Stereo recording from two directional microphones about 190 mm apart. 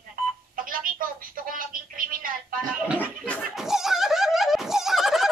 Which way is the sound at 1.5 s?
45° right (ahead or behind).